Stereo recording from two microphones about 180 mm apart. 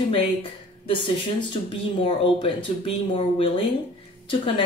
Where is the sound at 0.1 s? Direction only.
30° left (ahead or behind).